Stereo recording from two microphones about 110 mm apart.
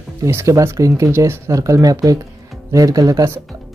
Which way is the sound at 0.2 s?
25° right (ahead or behind).